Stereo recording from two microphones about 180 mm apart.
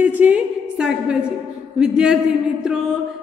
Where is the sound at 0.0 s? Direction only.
10° right (ahead or behind).